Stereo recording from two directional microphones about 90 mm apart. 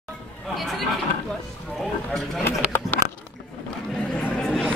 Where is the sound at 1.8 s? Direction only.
Centre (ahead or behind).